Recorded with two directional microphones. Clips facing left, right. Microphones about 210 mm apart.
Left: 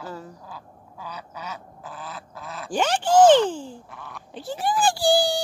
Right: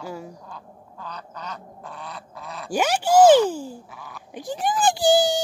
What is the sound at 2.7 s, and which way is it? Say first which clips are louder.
Speech: right 1 dB; 10° right (ahead or behind).